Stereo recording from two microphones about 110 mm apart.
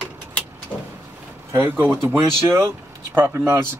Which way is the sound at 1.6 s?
20° right (ahead or behind).